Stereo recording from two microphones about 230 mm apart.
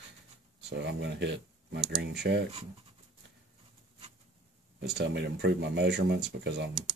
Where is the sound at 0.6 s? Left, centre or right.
Right.